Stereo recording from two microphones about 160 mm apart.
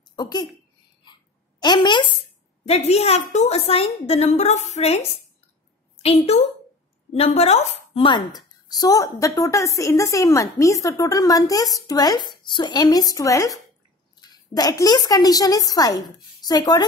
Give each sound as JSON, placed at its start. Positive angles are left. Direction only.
{"t": 0.0, "sound": "a sound", "side_deg": 25}
{"t": 1.6, "sound": "a woman's voice", "side_deg": 30}
{"t": 2.6, "sound": "a woman's voice", "side_deg": 40}
{"t": 6.0, "sound": "a woman's voice", "side_deg": 40}